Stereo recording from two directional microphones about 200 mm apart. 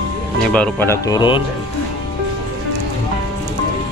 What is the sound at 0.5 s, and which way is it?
Speech, 10° left (ahead or behind).